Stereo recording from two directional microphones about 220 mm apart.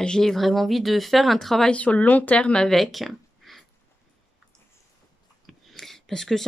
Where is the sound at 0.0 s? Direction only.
5° left (ahead or behind).